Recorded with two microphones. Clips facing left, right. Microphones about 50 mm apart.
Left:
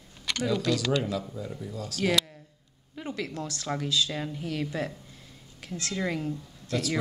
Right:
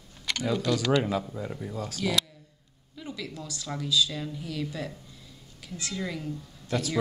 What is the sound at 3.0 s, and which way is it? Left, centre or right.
Speech, left.